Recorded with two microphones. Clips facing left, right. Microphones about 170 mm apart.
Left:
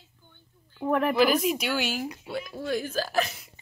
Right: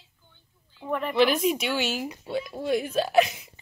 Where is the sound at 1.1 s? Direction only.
Centre (ahead or behind).